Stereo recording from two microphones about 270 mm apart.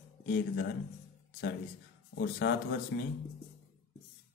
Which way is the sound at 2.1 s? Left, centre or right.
Left.